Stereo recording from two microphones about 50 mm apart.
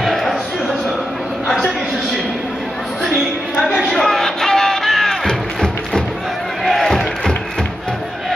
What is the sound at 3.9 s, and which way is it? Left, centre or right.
Music, centre.